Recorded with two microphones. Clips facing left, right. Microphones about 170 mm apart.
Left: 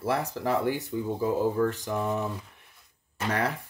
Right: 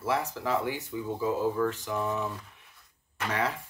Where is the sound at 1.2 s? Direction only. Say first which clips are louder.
Left 2 dB; 40° left (ahead or behind).